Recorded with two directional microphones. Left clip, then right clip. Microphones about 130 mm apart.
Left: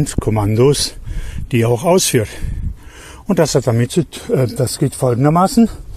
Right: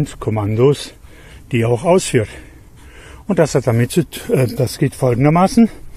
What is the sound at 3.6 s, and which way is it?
Speech, centre (ahead or behind).